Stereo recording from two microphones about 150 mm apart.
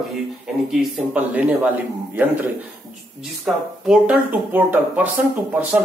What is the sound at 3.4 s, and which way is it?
A man's voice, 5° right (ahead or behind).